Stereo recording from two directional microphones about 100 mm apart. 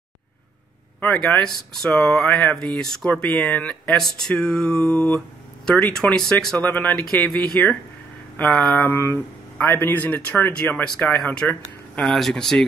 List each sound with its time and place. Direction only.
1.0 s speech: 5° left (ahead or behind)
8.7 s mantra: 20° left (ahead or behind)
9.8 s speech: 20° left (ahead or behind)